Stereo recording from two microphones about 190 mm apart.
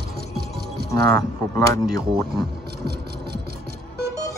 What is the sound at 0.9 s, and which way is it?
Speech, 15° left (ahead or behind).